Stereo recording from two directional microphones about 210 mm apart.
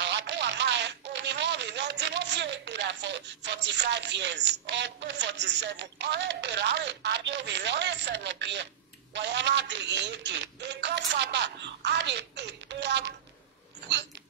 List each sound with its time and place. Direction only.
0.0 s a man's voice: 55° right (ahead or behind)